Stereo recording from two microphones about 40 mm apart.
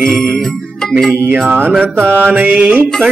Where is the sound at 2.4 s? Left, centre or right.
Right.